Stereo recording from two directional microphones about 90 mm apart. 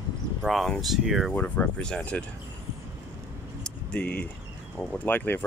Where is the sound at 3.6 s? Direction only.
10° left (ahead or behind).